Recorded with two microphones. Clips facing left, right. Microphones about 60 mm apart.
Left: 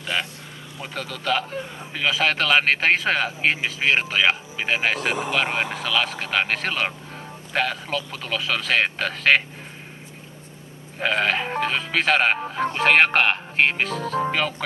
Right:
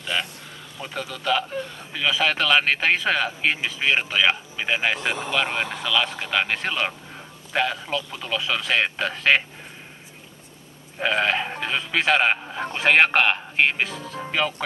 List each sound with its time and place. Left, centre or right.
0.0 s vehicle: centre
0.9 s speech: centre
1.6 s speech: centre
11.0 s speech: centre
13.9 s speech: left